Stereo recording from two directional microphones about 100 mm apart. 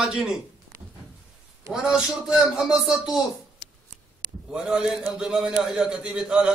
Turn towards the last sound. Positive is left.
turn(degrees=-10)  # may be behind; listen again after turning